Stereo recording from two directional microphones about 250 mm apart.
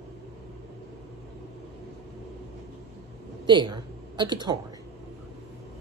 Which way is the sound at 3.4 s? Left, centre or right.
Centre.